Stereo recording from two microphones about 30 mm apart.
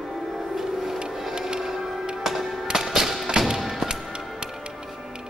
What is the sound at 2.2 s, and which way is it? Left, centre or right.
Music, centre.